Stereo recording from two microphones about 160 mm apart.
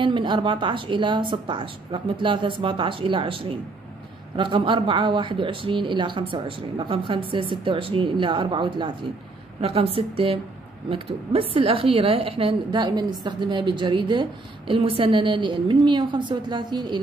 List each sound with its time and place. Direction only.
0.0 s speech: 30° right (ahead or behind)